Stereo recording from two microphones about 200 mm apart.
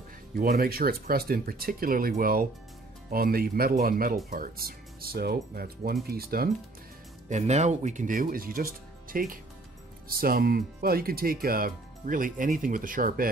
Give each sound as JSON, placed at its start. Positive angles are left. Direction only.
{"t": 0.4, "sound": "speech", "side_deg": -50}
{"t": 7.2, "sound": "speech", "side_deg": -35}